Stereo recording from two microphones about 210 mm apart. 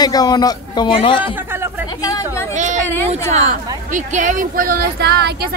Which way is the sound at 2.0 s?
15° left (ahead or behind).